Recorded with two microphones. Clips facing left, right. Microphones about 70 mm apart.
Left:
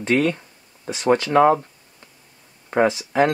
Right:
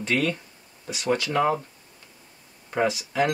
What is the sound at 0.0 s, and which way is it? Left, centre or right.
Speech, left.